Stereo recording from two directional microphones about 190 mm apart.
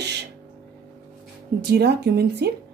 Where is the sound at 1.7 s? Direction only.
60° right (ahead or behind).